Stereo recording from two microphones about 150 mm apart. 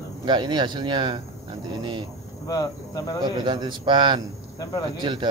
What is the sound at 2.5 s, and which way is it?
Speech, 25° left (ahead or behind).